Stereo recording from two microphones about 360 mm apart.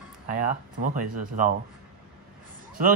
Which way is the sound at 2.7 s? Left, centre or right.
Right.